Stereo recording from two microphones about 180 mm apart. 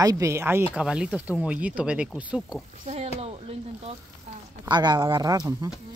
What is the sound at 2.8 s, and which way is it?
Speech, 35° right (ahead or behind).